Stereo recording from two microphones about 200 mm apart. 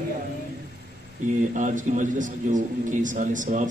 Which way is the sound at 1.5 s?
40° right (ahead or behind).